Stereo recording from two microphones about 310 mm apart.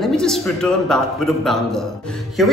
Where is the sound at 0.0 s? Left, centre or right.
Centre.